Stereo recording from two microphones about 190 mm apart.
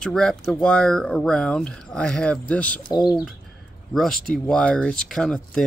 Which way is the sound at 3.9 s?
Centre (ahead or behind).